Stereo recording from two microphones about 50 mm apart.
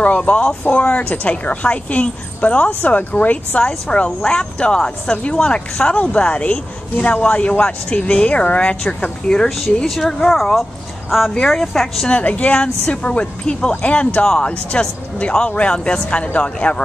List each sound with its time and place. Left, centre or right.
0.0 s speech: left
9.3 s speech: centre
12.1 s speech: left